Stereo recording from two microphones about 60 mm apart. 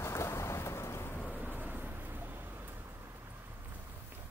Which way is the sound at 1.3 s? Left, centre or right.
Right.